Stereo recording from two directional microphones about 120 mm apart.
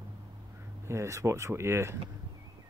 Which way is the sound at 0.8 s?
25° right (ahead or behind).